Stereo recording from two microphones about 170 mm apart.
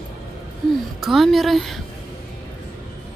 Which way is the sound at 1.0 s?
Centre (ahead or behind).